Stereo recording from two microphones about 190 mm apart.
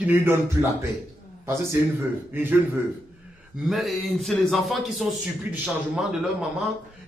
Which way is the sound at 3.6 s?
Centre (ahead or behind).